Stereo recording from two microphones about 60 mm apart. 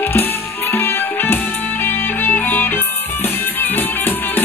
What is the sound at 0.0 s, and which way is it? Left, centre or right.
Music, left.